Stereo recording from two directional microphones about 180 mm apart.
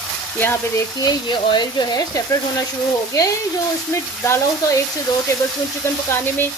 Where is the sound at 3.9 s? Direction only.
15° left (ahead or behind).